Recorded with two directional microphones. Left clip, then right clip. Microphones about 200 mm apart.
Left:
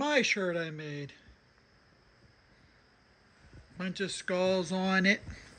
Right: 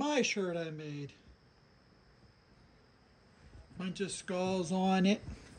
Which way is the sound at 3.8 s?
5° right (ahead or behind).